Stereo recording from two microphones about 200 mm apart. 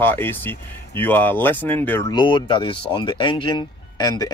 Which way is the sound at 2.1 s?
25° left (ahead or behind).